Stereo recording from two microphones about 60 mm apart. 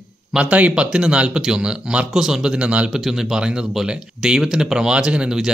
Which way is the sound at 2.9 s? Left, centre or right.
Centre.